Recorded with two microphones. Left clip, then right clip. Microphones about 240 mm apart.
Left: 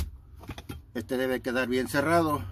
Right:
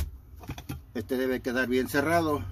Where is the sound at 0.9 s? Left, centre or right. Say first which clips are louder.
Even; centre.